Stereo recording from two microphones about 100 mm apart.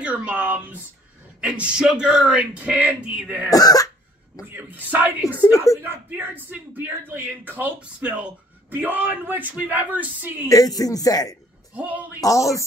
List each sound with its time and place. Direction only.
0.0 s a sound: 15° right (ahead or behind)
1.4 s speech: 10° right (ahead or behind)
3.4 s speech: 40° left (ahead or behind)
4.5 s speech: 20° right (ahead or behind)
5.4 s speech: 30° left (ahead or behind)
6.0 s speech: 15° right (ahead or behind)
10.5 s speech: 40° left (ahead or behind)
11.7 s speech: 15° right (ahead or behind)
12.2 s speech: 30° left (ahead or behind)